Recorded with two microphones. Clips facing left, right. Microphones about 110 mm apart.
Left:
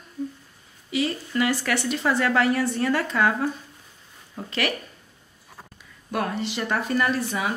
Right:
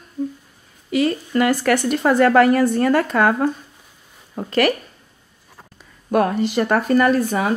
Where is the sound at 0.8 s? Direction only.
50° right (ahead or behind).